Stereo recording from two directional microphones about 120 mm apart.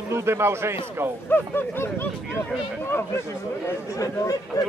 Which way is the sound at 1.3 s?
20° left (ahead or behind).